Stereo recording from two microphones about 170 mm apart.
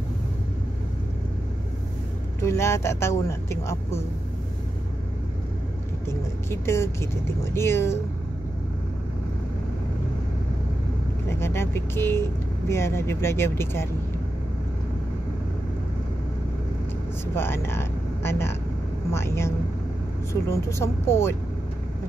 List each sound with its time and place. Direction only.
2.4 s speech: 15° left (ahead or behind)
6.0 s speech: 15° left (ahead or behind)
11.2 s speech: 15° left (ahead or behind)
17.3 s speech: 15° left (ahead or behind)